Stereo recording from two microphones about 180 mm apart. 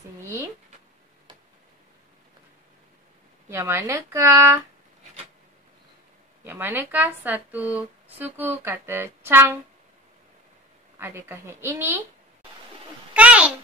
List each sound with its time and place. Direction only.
3.4 s a woman's voice: 15° right (ahead or behind)
6.4 s a woman's voice: 10° right (ahead or behind)
11.0 s a woman's voice: 10° right (ahead or behind)
13.1 s a sound: 5° right (ahead or behind)